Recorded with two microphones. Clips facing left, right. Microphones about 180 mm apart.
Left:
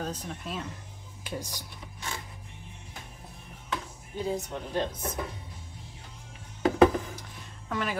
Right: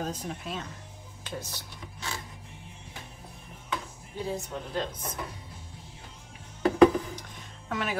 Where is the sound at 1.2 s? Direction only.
15° left (ahead or behind).